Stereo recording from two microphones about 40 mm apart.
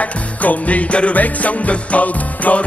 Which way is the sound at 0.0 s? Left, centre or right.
Left.